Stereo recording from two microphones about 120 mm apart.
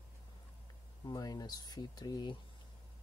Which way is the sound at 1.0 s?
30° left (ahead or behind).